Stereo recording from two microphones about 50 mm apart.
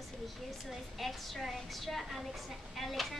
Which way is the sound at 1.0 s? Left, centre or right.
Centre.